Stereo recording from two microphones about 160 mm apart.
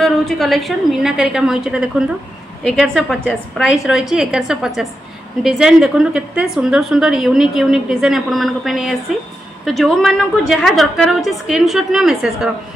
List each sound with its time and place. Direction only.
0.0 s a woman's voice: centre (ahead or behind)